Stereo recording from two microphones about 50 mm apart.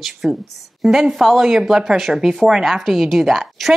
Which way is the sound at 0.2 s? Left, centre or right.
Centre.